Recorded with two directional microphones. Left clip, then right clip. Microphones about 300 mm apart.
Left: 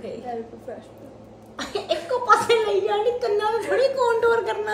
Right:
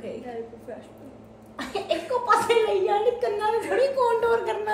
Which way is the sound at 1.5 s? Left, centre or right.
Centre.